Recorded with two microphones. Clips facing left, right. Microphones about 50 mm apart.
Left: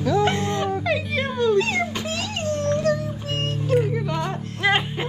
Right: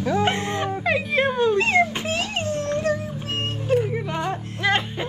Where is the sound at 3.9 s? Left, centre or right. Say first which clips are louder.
Even; centre.